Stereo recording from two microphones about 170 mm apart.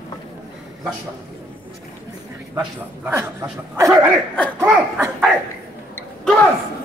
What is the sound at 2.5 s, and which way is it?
Speech, 10° right (ahead or behind).